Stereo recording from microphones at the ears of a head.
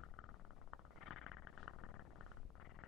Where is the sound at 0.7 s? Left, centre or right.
Left.